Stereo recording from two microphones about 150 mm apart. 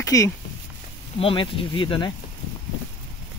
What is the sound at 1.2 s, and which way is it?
Speech, 35° left (ahead or behind).